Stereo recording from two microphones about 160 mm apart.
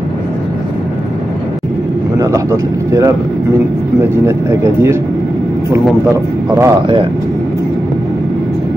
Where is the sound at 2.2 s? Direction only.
20° right (ahead or behind).